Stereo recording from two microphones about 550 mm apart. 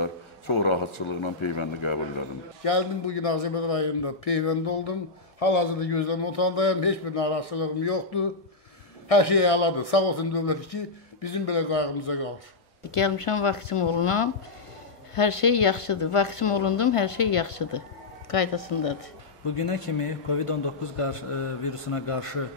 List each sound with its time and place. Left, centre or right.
0.0 s a man's voice: left
12.9 s a man's voice: left
18.3 s a man's voice: left